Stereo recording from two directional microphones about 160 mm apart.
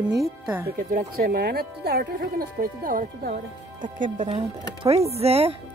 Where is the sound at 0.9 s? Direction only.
65° right (ahead or behind).